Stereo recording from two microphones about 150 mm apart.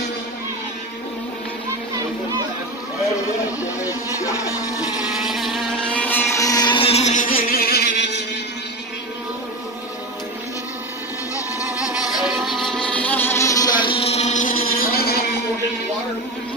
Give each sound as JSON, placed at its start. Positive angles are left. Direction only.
{"t": 4.2, "sound": "music", "side_deg": 20}
{"t": 5.2, "sound": "motorboat", "side_deg": 0}
{"t": 11.8, "sound": "music", "side_deg": -5}